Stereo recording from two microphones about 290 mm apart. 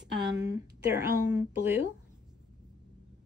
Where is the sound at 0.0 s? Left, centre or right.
Right.